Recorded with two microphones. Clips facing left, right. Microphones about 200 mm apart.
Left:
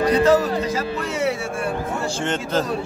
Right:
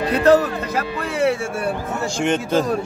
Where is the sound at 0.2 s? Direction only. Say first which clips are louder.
Right 2 dB; 60° right (ahead or behind).